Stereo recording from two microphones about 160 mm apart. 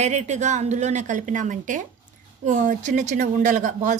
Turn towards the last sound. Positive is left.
turn(degrees=-50)  # may be behind; listen again after turning